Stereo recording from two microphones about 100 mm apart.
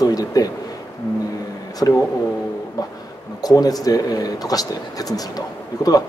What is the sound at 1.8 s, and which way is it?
Speech, 30° left (ahead or behind).